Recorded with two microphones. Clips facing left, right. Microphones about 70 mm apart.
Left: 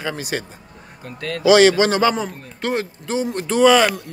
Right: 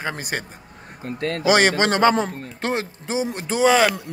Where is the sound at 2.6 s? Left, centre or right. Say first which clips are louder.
Left 2 dB; right.